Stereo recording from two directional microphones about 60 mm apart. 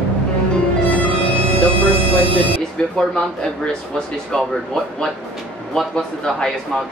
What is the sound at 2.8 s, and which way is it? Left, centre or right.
Speech, centre.